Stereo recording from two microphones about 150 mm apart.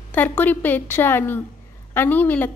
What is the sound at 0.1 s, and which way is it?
A woman's voice, 10° left (ahead or behind).